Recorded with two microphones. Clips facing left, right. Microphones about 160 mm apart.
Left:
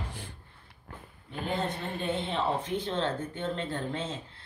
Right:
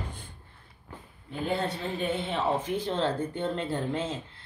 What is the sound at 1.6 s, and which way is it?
Speech, 55° left (ahead or behind).